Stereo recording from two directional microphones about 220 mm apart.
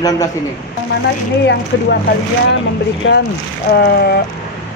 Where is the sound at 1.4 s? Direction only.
50° left (ahead or behind).